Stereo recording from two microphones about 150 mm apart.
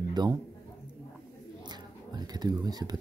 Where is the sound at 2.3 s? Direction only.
25° right (ahead or behind).